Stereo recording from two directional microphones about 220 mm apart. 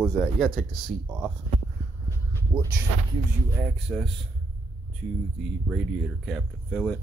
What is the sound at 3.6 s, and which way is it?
Speech, 5° right (ahead or behind).